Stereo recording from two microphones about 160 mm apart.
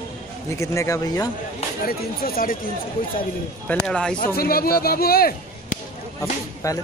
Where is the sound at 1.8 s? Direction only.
70° left (ahead or behind).